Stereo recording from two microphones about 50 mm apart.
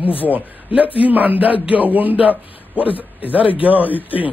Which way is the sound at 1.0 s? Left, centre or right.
Right.